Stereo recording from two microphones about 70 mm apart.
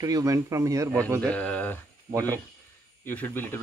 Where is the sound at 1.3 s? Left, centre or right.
Centre.